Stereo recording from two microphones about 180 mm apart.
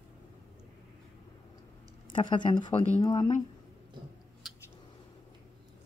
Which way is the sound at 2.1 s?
25° left (ahead or behind).